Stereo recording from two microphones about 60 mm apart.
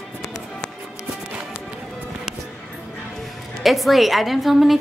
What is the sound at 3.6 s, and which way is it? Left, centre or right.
A woman's voice, centre.